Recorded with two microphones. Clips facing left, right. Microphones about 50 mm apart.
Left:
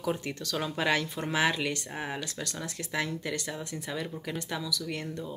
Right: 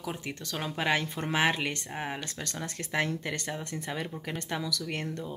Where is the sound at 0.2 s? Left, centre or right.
Right.